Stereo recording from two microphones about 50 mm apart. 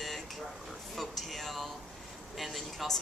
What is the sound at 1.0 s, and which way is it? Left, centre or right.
A woman's voice, centre.